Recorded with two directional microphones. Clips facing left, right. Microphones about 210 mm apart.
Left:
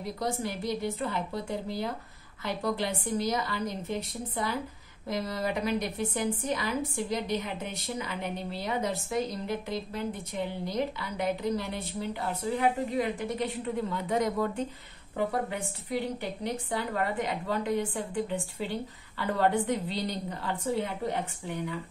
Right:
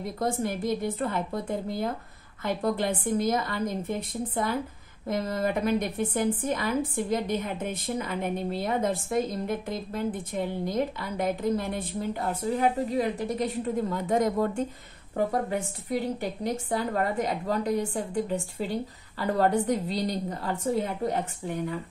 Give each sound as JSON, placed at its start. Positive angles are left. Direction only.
{"t": 0.2, "sound": "a woman's voice", "side_deg": -50}